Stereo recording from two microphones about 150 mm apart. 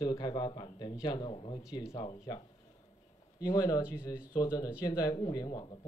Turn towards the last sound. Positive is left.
turn(degrees=25)  # may be behind; listen again after turning